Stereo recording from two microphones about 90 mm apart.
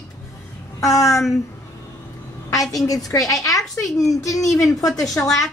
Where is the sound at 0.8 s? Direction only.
40° left (ahead or behind).